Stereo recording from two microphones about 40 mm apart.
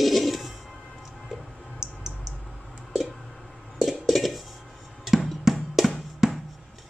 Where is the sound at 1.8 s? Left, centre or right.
Right.